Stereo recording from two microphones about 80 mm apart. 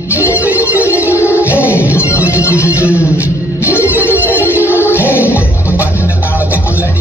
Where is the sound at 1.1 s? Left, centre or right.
Left.